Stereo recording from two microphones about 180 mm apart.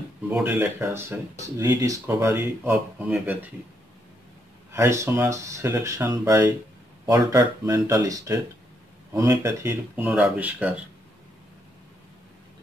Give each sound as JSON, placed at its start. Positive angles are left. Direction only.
{"t": 0.3, "sound": "speech", "side_deg": -5}
{"t": 4.7, "sound": "speech", "side_deg": -15}